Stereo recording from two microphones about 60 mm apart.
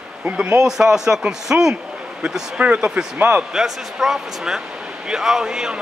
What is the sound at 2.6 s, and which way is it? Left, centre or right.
Speech, centre.